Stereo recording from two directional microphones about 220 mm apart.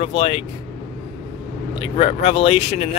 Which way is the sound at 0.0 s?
25° left (ahead or behind).